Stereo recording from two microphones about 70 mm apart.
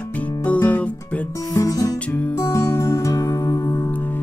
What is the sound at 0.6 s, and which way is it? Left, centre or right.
Music, left.